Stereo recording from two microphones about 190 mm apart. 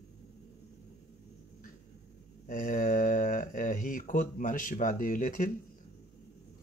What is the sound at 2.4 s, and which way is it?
Speech, 45° left (ahead or behind).